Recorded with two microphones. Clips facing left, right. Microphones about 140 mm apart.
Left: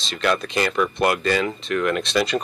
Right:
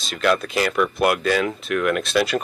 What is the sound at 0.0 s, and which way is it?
Speech, centre (ahead or behind).